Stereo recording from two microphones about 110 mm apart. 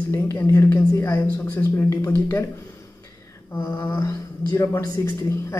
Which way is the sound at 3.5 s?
20° left (ahead or behind).